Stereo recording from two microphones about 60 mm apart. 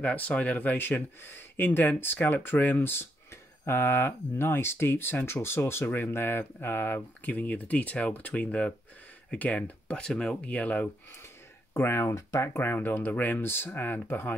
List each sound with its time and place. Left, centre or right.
0.0 s speech: left
11.7 s speech: left
12.2 s speech: left
12.5 s speech: left